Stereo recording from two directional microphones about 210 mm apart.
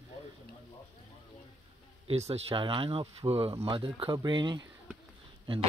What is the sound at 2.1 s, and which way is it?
Speech, 30° right (ahead or behind).